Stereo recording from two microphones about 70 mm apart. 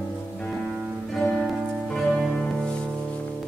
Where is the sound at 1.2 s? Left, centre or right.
Centre.